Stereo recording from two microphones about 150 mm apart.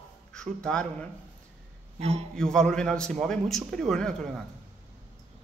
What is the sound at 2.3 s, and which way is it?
A man's voice, 5° left (ahead or behind).